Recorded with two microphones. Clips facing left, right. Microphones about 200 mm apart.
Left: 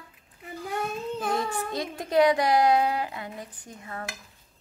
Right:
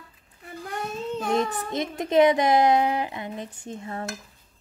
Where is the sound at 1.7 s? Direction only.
20° right (ahead or behind).